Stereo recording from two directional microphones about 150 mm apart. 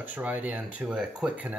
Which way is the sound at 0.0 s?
10° right (ahead or behind).